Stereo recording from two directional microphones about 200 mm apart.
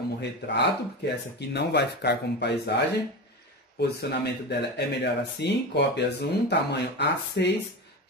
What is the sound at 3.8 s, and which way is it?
Speech, 55° left (ahead or behind).